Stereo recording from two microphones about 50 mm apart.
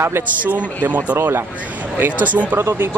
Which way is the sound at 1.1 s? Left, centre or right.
Right.